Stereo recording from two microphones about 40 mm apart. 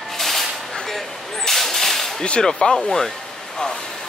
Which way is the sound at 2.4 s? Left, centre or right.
Centre.